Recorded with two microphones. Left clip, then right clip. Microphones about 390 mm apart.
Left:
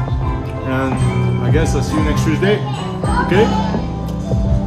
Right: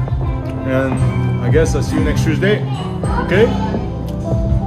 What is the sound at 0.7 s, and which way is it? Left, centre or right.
Speech, centre.